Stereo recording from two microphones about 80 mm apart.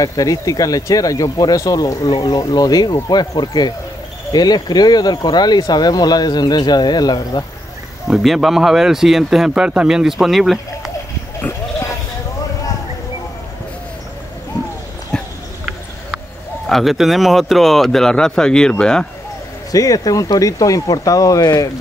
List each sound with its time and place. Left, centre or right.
0.0 s speech: left
8.1 s speech: centre
16.6 s speech: centre
19.7 s speech: left